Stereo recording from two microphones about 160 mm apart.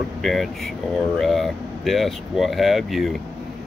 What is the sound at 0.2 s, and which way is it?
Speech, centre (ahead or behind).